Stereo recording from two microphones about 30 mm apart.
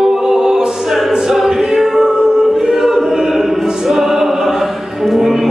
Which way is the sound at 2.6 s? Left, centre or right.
Centre.